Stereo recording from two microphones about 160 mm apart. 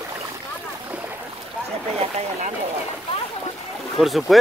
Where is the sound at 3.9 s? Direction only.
Centre (ahead or behind).